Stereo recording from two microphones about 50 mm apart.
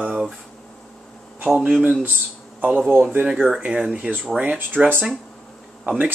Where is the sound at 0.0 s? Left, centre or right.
Centre.